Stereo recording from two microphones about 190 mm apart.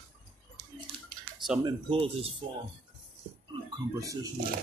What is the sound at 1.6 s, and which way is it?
Speech, 25° right (ahead or behind).